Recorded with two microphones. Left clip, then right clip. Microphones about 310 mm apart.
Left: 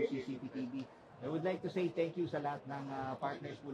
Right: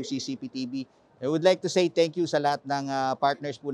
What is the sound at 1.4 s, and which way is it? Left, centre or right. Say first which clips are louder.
Speech: right 16 dB; right.